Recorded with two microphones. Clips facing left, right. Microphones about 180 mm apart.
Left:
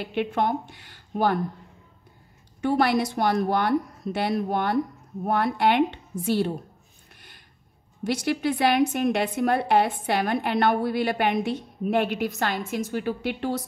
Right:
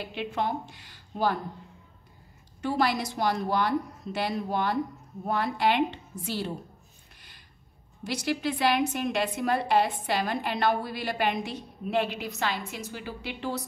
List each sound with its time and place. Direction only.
0.0 s a woman's voice: 60° left (ahead or behind)
2.6 s a woman's voice: 60° left (ahead or behind)
8.0 s a woman's voice: 55° left (ahead or behind)